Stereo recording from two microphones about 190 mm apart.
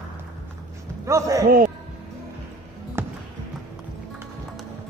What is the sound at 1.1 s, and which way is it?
Speech, 15° right (ahead or behind).